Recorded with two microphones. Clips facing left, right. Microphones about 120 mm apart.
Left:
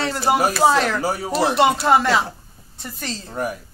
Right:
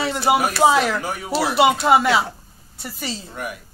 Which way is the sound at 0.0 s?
Centre (ahead or behind).